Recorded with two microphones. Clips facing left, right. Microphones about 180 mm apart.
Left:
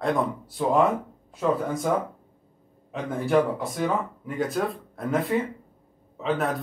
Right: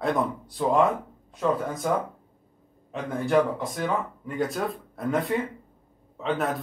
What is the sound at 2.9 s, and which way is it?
Speech, centre (ahead or behind).